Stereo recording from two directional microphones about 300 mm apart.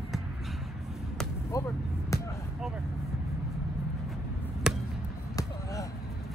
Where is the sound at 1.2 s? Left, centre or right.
Centre.